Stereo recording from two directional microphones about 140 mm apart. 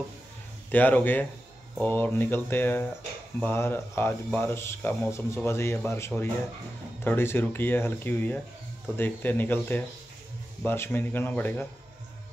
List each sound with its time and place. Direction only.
0.7 s speech: 10° left (ahead or behind)